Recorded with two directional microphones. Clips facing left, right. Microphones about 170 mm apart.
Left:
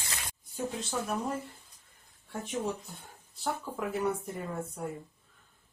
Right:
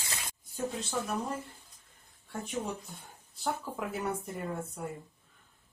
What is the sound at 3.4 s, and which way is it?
Speech, centre (ahead or behind).